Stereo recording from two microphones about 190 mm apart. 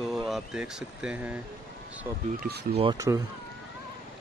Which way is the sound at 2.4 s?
50° right (ahead or behind).